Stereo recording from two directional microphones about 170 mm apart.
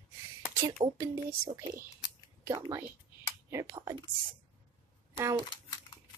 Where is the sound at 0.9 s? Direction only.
20° right (ahead or behind).